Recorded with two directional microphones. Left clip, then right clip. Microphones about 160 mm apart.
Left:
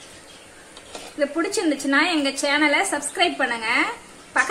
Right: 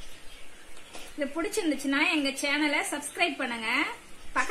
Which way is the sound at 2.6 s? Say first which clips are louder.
Left 9 dB; 55° right (ahead or behind).